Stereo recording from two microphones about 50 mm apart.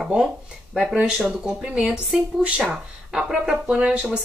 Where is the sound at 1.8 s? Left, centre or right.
Right.